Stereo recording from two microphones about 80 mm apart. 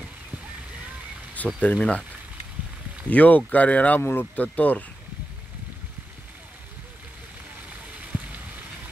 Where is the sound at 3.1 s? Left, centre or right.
Centre.